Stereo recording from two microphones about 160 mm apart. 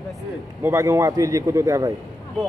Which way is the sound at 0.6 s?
15° right (ahead or behind).